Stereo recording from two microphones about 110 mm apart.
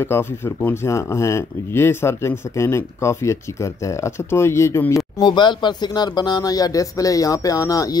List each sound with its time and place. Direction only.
0.0 s speech: 20° left (ahead or behind)
5.2 s speech: 45° left (ahead or behind)